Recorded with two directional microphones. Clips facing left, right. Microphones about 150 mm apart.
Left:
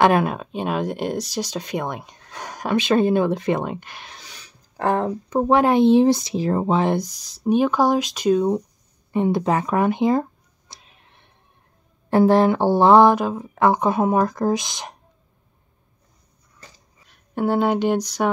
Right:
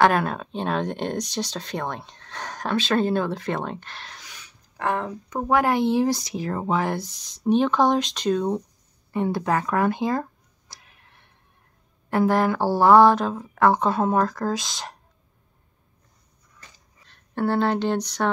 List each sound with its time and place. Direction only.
0.0 s speech: 15° left (ahead or behind)
4.2 s speech: 35° left (ahead or behind)
7.2 s speech: 10° left (ahead or behind)
10.7 s tick-tock: 20° left (ahead or behind)
12.1 s speech: 30° left (ahead or behind)
17.0 s speech: 10° left (ahead or behind)